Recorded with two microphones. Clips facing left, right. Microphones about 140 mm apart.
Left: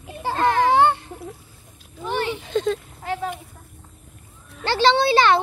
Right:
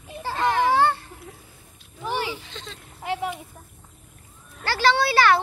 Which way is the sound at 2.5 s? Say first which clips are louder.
Left 19 dB; 50° left (ahead or behind).